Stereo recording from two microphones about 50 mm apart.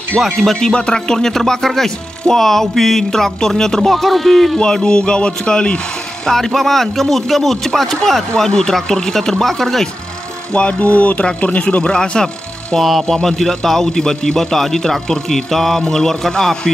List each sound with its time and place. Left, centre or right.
0.2 s speech: centre
4.6 s speech: centre
10.5 s speech: left
12.7 s speech: centre